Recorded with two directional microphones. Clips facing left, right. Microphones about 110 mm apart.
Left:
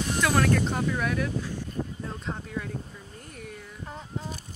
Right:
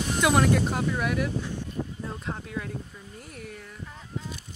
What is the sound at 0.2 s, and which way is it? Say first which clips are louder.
Speech: right 2 dB; 15° right (ahead or behind).